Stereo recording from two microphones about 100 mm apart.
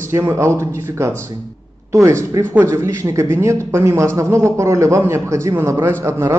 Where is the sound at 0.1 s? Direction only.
25° right (ahead or behind).